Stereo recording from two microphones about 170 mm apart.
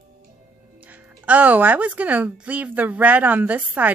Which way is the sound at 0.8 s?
10° right (ahead or behind).